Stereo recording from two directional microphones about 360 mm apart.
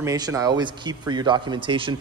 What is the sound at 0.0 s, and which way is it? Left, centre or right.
A man's voice, centre.